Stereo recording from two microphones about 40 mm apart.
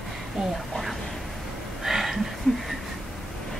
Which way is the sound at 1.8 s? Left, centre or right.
Centre.